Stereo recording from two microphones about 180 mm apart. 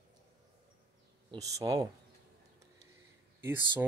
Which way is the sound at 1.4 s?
20° right (ahead or behind).